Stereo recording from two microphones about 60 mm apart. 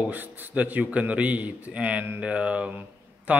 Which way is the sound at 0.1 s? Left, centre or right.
Right.